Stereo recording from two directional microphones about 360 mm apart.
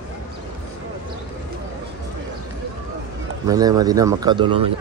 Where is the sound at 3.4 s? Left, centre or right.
Centre.